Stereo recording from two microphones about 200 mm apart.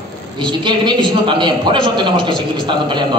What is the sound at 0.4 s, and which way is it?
A woman's voice, 20° right (ahead or behind).